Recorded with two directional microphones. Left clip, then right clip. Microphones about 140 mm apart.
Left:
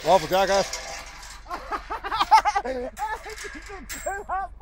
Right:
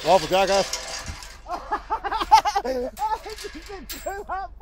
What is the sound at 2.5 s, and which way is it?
Laughter, 65° right (ahead or behind).